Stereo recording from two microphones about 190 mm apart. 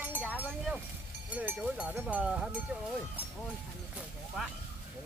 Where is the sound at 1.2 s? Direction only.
5° right (ahead or behind).